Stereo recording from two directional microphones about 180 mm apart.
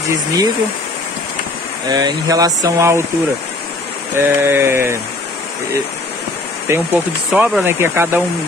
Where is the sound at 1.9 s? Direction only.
20° right (ahead or behind).